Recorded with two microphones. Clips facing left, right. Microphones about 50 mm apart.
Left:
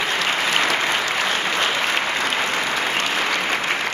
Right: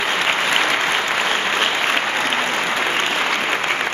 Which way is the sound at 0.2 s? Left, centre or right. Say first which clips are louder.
Right 2 dB; right.